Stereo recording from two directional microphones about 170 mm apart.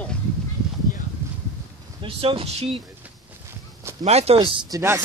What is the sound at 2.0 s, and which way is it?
Speech, 30° right (ahead or behind).